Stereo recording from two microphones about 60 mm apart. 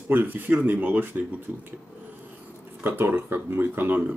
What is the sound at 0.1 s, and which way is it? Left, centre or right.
Speech, right.